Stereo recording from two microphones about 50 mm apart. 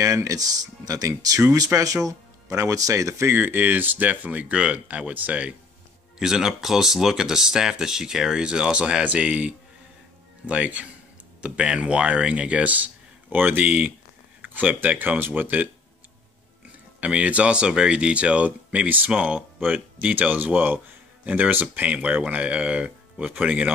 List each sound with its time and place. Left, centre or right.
1.7 s speech: right
2.5 s speech: right
3.3 s speech: right
6.1 s speech: centre; by 13.7 s right
13.7 s speech: right
17.0 s speech: right